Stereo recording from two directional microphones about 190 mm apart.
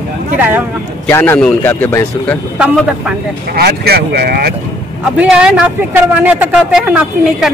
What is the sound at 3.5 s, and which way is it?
Speech, 50° right (ahead or behind).